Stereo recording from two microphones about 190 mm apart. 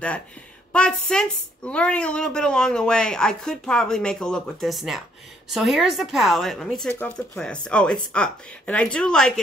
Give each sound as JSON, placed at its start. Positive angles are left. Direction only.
{"t": 0.7, "sound": "speech", "side_deg": 5}